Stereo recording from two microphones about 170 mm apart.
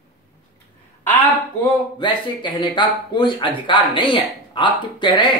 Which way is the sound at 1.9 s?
25° left (ahead or behind).